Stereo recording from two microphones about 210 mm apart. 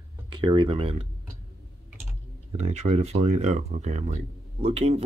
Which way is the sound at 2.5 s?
30° right (ahead or behind).